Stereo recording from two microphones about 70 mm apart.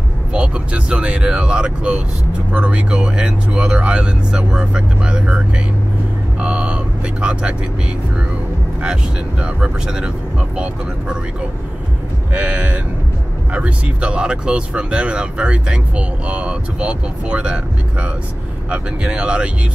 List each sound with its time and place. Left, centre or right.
0.3 s speech: centre
6.4 s speech: centre
9.4 s speech: centre
12.4 s speech: centre
18.7 s speech: centre